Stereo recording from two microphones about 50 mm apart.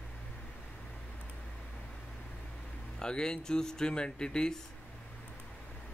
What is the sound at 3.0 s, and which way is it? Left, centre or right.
Speech, centre.